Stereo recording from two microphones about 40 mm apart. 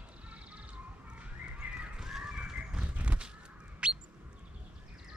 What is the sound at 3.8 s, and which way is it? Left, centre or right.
Bird, right.